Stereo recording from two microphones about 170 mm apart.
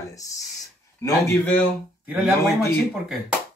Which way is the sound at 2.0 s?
10° right (ahead or behind).